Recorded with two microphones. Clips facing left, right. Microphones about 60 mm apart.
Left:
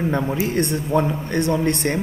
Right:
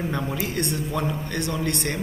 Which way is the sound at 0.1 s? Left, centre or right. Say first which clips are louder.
Left 6 dB; left.